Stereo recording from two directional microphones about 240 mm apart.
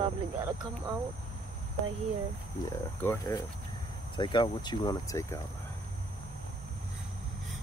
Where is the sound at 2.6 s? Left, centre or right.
Centre.